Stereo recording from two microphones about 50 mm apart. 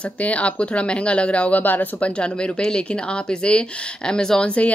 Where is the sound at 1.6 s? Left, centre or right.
Left.